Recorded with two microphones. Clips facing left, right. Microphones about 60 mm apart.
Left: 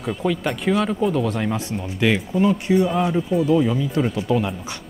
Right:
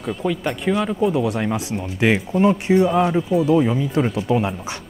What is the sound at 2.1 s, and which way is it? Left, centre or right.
Speech, right.